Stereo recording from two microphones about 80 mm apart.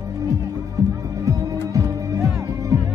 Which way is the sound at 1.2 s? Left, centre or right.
Right.